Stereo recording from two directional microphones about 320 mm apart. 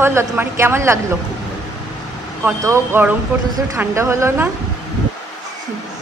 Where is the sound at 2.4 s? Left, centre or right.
Centre.